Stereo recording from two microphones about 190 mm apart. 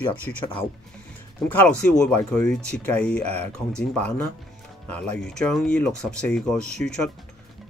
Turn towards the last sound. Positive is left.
turn(degrees=5)  # may be behind; listen again after turning